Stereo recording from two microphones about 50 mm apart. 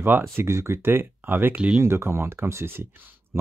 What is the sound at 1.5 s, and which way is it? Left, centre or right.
Speech, right.